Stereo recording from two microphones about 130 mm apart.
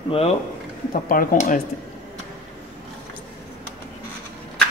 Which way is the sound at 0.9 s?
90° left.